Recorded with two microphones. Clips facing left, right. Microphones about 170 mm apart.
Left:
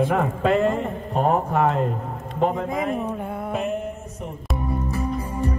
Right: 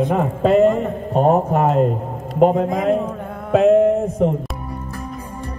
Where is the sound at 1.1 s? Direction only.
40° right (ahead or behind).